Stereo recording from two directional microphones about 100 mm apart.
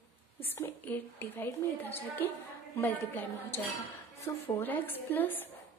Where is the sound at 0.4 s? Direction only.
20° left (ahead or behind).